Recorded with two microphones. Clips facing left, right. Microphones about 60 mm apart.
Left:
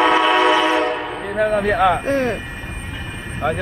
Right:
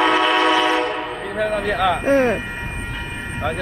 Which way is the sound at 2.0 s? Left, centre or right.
Centre.